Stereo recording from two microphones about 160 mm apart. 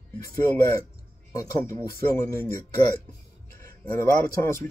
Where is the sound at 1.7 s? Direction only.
20° left (ahead or behind).